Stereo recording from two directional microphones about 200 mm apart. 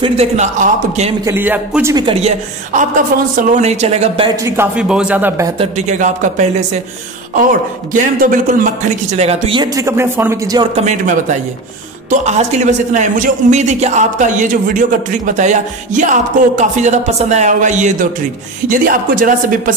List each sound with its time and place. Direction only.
0.0 s speech: 35° right (ahead or behind)
1.2 s speech: 10° right (ahead or behind)
2.0 s speech: 30° right (ahead or behind)
4.4 s speech: 15° right (ahead or behind)
5.6 s speech: 35° right (ahead or behind)
7.9 s speech: 40° right (ahead or behind)
9.1 s speech: 35° right (ahead or behind); by 10.7 s 15° right (ahead or behind)
10.8 s speech: 35° right (ahead or behind)